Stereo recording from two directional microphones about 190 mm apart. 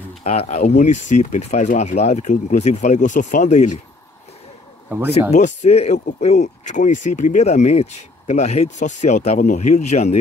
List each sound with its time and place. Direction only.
0.2 s speech: 35° left (ahead or behind)
4.8 s speech: 10° right (ahead or behind)
5.3 s speech: 40° left (ahead or behind)